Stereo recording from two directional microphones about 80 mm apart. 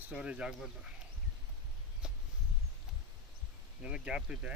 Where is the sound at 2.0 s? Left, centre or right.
Centre.